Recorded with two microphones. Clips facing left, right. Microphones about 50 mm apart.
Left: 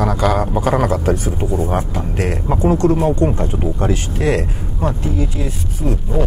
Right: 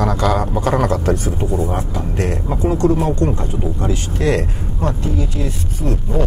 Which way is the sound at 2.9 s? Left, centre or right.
Centre.